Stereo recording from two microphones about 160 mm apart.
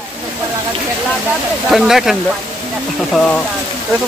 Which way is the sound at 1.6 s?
Centre (ahead or behind).